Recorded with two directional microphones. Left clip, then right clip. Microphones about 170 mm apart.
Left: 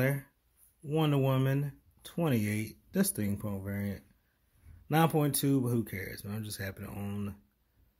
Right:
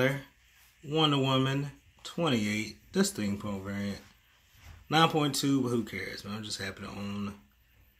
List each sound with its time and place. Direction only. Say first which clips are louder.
0.8 s speech: right 3 dB; 40° left (ahead or behind)